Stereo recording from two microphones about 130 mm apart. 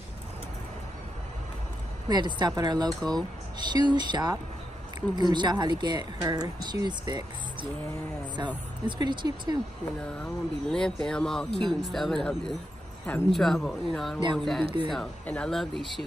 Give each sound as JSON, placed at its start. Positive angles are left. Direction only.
{"t": 2.0, "sound": "speech", "side_deg": -35}
{"t": 8.8, "sound": "speech", "side_deg": -35}
{"t": 10.2, "sound": "speech", "side_deg": 5}